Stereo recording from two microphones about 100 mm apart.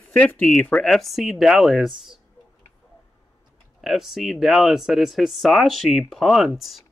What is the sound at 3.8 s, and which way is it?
Speech, centre (ahead or behind).